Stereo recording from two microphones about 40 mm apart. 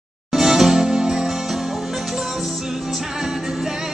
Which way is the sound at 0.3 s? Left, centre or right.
Centre.